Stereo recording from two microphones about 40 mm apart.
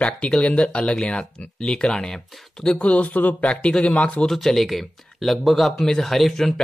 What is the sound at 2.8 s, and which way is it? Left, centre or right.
Speech, left.